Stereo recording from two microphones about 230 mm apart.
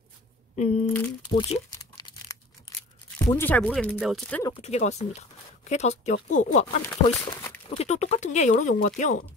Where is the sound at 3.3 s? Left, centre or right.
Centre.